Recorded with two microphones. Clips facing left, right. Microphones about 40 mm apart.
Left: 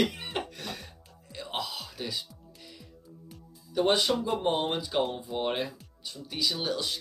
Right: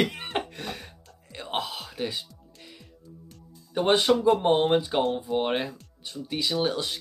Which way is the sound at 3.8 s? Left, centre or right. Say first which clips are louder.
Right 7 dB; right.